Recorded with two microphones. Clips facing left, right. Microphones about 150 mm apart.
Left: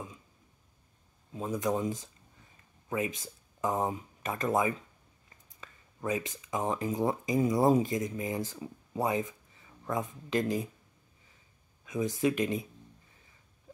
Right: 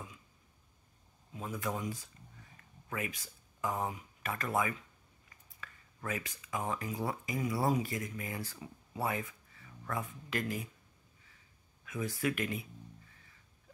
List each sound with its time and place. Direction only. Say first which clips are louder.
1.3 s speech: left 7 dB; 20° left (ahead or behind)
11.8 s speech: left 6 dB; 20° left (ahead or behind)